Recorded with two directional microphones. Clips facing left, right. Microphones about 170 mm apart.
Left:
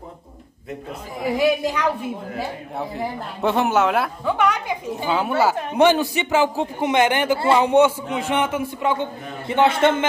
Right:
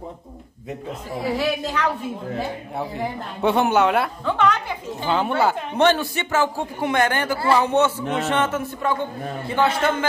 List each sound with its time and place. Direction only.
1.2 s a woman's voice: 15° left (ahead or behind)
2.3 s speech: centre (ahead or behind)
4.4 s a woman's voice: 10° left (ahead or behind)
9.5 s a man's voice: 25° left (ahead or behind)